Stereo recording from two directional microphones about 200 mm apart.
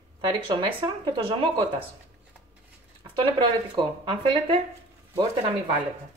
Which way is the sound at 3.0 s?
25° right (ahead or behind).